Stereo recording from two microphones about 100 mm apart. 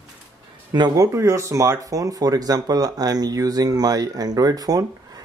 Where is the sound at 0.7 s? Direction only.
45° right (ahead or behind).